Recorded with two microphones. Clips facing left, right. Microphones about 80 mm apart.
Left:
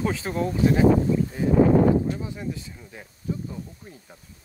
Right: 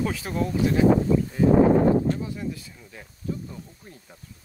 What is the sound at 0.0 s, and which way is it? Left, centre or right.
Speech, left.